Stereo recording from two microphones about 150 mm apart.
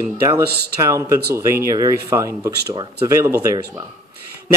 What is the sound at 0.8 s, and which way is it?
Speech, 20° right (ahead or behind).